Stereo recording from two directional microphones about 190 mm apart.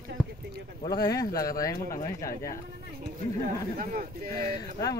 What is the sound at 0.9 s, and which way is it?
Speech, 20° left (ahead or behind).